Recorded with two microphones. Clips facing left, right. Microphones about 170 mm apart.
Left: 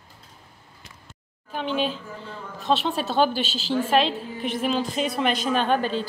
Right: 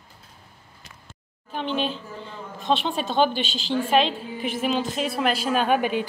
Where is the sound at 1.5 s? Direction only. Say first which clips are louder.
Left 1 dB; 5° left (ahead or behind).